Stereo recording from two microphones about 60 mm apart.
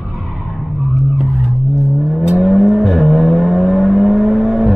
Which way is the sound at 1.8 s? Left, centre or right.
Right.